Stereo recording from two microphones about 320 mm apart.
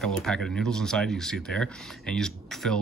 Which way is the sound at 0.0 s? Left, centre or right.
Centre.